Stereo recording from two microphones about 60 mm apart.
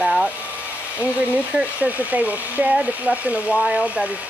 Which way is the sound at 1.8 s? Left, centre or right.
Right.